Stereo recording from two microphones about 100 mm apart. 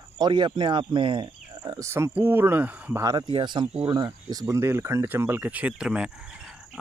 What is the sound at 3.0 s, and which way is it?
Speech, 35° right (ahead or behind).